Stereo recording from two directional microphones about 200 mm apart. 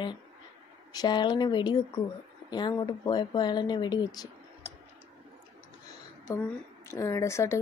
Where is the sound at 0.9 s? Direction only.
20° left (ahead or behind).